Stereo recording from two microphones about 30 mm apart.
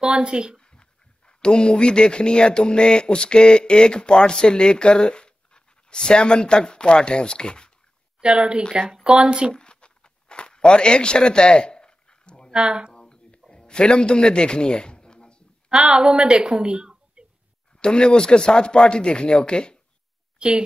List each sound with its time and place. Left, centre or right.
0.0 s speech: right
0.6 s speech: left
8.2 s a woman's voice: right
9.6 s a sound: left
12.5 s speech: right
12.9 s a sound: left
15.7 s a woman's voice: right
17.7 s speech: left
20.3 s a woman's voice: right